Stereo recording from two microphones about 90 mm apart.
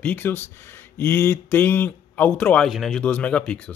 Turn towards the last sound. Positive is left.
turn(degrees=10)  # may be behind; listen again after turning